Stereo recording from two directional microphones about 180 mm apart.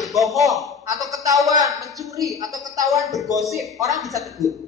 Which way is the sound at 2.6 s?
20° right (ahead or behind).